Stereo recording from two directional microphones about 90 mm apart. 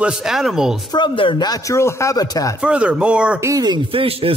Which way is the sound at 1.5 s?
35° left (ahead or behind).